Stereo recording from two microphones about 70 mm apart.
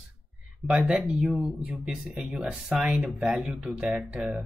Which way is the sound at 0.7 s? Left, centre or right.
Centre.